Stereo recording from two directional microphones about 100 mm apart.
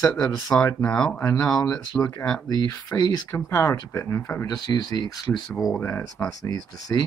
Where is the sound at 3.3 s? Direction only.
20° left (ahead or behind).